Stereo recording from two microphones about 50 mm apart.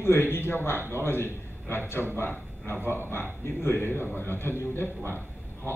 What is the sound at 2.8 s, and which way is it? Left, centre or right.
A man's voice, left.